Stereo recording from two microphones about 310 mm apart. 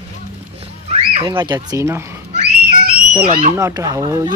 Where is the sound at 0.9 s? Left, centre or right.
Centre.